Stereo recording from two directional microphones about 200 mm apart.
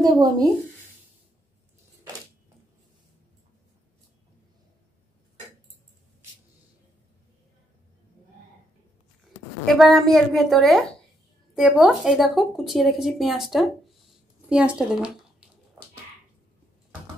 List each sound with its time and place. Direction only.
0.0 s speech: 20° right (ahead or behind)
9.3 s speech: centre (ahead or behind)